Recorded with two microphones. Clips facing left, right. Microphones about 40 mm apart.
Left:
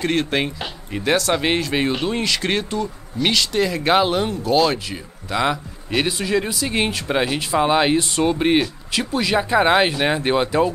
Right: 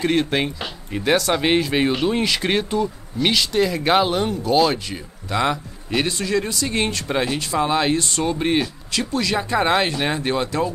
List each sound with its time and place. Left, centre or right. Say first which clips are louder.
0.0 s speech: right 1 dB; centre; by 10.7 s left